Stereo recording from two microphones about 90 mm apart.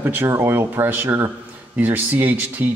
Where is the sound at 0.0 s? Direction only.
25° right (ahead or behind).